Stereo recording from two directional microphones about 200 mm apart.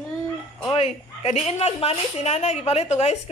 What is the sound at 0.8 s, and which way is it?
A woman's voice, 30° left (ahead or behind).